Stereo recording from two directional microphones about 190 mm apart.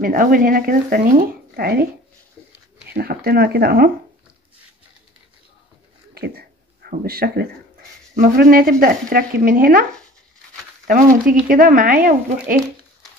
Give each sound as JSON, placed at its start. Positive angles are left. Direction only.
{"t": 0.0, "sound": "speech", "side_deg": -45}
{"t": 2.9, "sound": "speech", "side_deg": -50}
{"t": 6.1, "sound": "a sound", "side_deg": -55}
{"t": 8.1, "sound": "speech", "side_deg": -50}
{"t": 10.9, "sound": "speech", "side_deg": -45}